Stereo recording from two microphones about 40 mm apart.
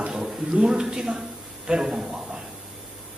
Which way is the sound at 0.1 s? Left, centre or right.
Centre.